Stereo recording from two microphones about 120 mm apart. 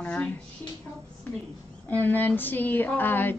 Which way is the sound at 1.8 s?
15° left (ahead or behind).